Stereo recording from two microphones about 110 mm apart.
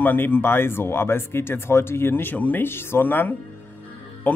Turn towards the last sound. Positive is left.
turn(degrees=15)  # may be behind; listen again after turning